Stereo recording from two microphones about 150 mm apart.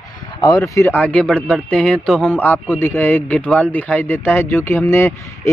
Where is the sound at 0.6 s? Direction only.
20° left (ahead or behind); by 2.3 s 5° left (ahead or behind).